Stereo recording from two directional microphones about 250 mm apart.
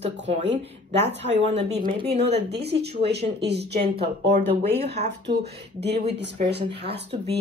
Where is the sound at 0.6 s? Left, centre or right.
Right.